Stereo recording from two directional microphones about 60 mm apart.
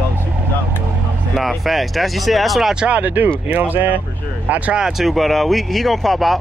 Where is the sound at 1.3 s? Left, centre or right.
Centre.